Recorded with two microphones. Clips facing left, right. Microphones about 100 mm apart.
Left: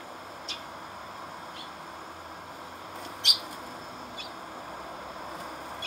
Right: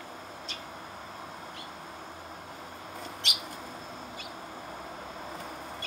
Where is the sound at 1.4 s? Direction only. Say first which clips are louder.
Left 1 dB; 5° left (ahead or behind).